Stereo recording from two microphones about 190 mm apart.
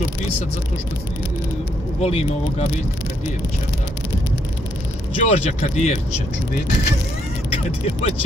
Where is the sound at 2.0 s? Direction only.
30° left (ahead or behind).